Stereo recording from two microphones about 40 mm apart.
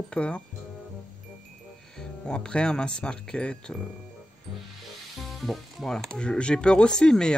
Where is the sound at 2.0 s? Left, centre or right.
Left.